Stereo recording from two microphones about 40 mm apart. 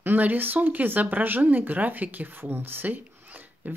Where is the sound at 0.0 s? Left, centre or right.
Right.